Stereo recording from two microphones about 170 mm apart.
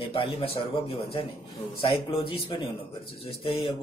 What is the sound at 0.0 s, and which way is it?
A man's voice, 35° left (ahead or behind).